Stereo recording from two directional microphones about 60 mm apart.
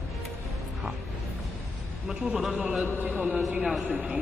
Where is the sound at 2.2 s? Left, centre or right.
Centre.